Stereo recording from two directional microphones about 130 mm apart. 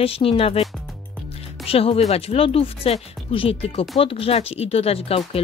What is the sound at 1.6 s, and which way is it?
A woman's voice, 50° left (ahead or behind).